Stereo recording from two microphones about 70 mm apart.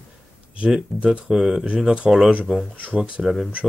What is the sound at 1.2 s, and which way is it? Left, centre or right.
Speech, centre.